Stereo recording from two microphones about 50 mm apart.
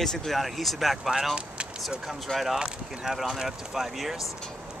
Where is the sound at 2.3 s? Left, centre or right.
Centre.